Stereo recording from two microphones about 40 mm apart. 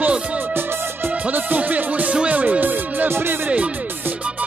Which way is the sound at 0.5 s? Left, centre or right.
Right.